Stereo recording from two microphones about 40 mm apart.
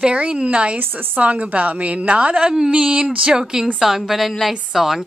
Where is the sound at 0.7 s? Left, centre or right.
Right.